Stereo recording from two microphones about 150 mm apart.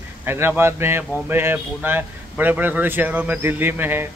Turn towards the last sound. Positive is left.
turn(degrees=-15)  # may be behind; listen again after turning